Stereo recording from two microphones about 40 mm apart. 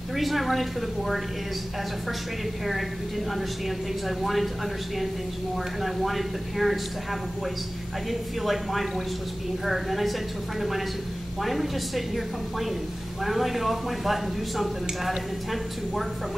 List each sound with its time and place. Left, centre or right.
0.1 s speech: centre
4.2 s speech: centre
5.8 s speech: centre
8.1 s speech: centre
11.4 s speech: centre
13.2 s speech: centre